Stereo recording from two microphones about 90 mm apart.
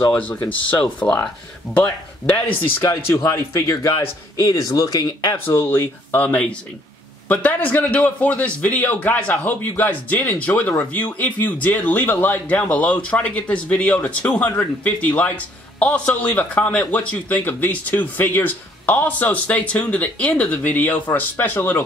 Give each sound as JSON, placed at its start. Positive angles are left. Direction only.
{"t": 0.1, "sound": "a man's voice", "side_deg": 15}
{"t": 2.8, "sound": "speech", "side_deg": 35}
{"t": 5.5, "sound": "a man's voice", "side_deg": 25}